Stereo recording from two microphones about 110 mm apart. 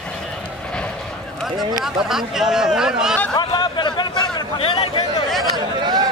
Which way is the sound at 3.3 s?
45° left (ahead or behind).